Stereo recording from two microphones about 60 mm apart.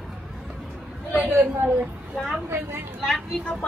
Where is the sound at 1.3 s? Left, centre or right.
Right.